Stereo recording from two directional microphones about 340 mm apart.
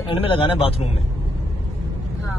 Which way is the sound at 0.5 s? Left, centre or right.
Centre.